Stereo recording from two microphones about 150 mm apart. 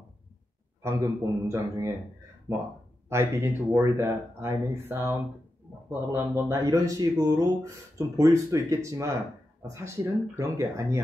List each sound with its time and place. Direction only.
1.0 s speech: 20° right (ahead or behind)